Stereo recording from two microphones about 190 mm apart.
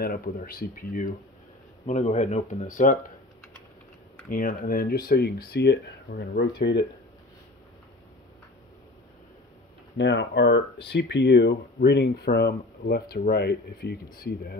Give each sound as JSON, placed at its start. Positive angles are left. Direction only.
{"t": 0.0, "sound": "speech", "side_deg": 50}
{"t": 4.3, "sound": "speech", "side_deg": 45}
{"t": 9.9, "sound": "speech", "side_deg": 70}